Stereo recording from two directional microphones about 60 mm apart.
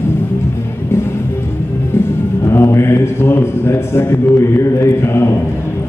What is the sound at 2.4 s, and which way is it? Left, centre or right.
Speech, left.